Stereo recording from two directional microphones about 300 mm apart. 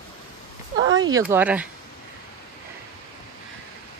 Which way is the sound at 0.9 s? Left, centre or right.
Centre.